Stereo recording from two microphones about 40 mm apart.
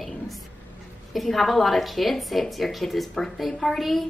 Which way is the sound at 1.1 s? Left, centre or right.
Centre.